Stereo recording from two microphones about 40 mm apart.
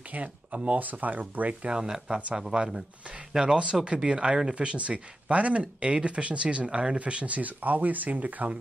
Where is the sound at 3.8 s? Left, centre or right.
Right.